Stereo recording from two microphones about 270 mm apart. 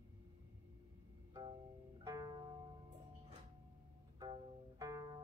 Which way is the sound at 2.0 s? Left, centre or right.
Centre.